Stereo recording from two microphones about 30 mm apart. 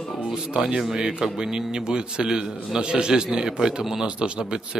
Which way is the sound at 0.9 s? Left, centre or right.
Right.